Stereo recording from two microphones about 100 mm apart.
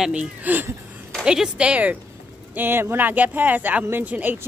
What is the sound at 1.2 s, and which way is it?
A man's voice, 10° right (ahead or behind).